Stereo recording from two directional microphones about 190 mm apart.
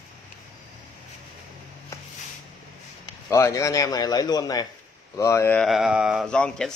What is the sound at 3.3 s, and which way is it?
A man's voice, 15° left (ahead or behind).